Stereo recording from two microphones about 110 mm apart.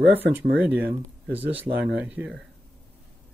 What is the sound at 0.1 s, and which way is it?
Speech, 15° right (ahead or behind).